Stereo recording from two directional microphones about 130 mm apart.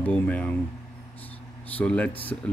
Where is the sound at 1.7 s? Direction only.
10° left (ahead or behind).